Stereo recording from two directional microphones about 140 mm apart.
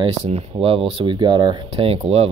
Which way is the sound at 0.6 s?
40° right (ahead or behind).